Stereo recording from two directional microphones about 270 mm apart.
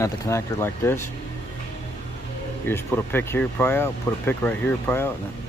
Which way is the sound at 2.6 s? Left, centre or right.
Centre.